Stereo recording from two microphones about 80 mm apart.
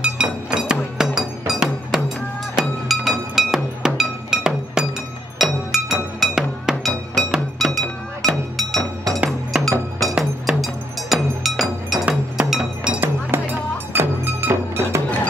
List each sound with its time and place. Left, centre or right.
0.0 s music: centre
6.1 s chink: centre
8.5 s music: centre
12.4 s chink: centre
13.3 s music: right